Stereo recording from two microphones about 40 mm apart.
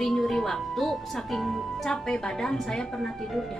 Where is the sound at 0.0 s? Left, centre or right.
Centre.